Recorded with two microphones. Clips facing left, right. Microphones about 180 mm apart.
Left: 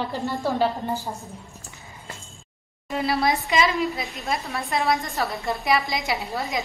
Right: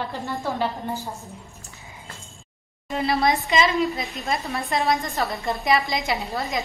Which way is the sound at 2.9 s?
5° left (ahead or behind).